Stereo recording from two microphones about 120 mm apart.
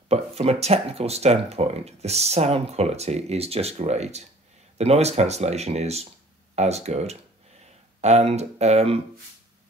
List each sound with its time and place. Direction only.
0.1 s speech: 60° right (ahead or behind)